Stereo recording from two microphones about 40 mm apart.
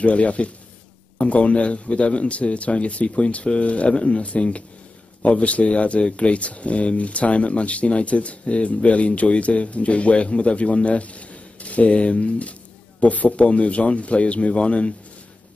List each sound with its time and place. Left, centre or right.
0.0 s speech: left